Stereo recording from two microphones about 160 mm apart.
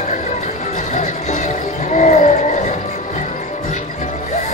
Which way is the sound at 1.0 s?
45° left (ahead or behind).